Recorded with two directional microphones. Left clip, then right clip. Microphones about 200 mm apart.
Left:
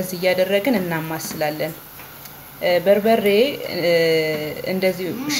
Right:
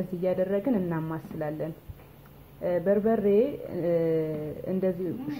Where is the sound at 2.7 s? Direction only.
15° left (ahead or behind).